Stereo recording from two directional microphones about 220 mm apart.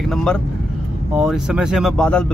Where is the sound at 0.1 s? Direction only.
5° left (ahead or behind).